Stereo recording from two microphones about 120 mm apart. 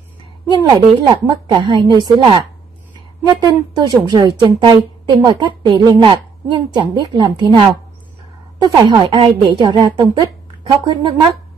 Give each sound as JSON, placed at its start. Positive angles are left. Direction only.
{"t": 0.5, "sound": "a woman's voice", "side_deg": -35}
{"t": 3.3, "sound": "a woman's voice", "side_deg": -35}